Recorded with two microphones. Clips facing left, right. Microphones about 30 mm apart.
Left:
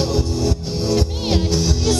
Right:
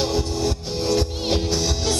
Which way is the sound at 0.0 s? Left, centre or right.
Centre.